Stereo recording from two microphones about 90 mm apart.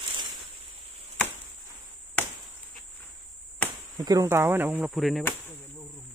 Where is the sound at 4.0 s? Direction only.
45° right (ahead or behind).